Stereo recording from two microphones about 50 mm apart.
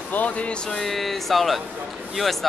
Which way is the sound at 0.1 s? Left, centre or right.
Left.